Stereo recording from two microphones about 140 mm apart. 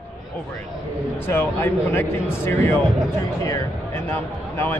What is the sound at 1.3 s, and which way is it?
A man's voice, 15° left (ahead or behind).